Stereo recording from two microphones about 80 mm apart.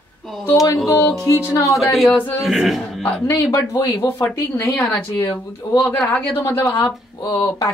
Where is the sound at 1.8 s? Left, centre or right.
Centre.